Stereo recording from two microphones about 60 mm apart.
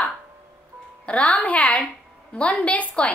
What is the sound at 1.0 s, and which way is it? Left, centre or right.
A woman's voice, centre.